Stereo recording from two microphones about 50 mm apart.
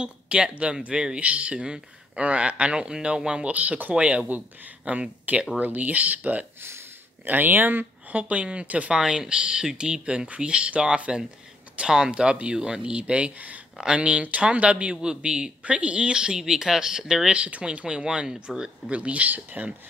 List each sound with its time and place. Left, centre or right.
0.0 s a man's voice: right
3.5 s a man's voice: right
8.1 s a man's voice: right
8.9 s a man's voice: centre; by 19.7 s right